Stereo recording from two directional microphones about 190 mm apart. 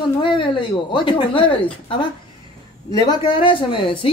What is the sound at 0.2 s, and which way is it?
Speech, 25° left (ahead or behind).